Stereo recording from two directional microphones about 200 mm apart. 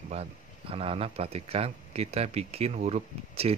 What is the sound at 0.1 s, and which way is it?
Speech, 30° right (ahead or behind).